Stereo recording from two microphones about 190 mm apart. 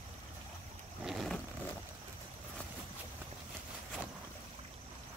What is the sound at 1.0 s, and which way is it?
Vehicle, centre (ahead or behind).